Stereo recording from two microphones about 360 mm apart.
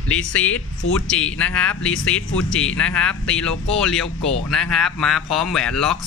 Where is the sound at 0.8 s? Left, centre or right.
Left.